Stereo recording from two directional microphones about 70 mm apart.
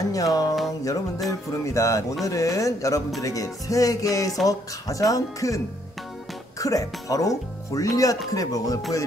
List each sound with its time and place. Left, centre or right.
0.0 s speech: left
6.6 s speech: left